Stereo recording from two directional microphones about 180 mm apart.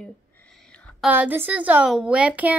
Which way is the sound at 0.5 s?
5° left (ahead or behind).